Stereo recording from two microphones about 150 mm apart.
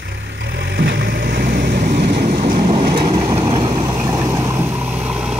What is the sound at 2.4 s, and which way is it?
Vehicle, 35° right (ahead or behind).